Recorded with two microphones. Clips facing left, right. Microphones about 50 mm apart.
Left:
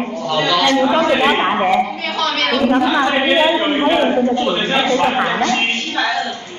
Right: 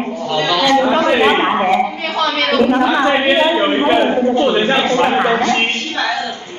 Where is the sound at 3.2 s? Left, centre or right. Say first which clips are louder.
Right 1 dB; centre.